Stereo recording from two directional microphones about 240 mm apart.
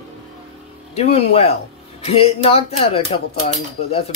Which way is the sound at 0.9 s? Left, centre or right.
Left.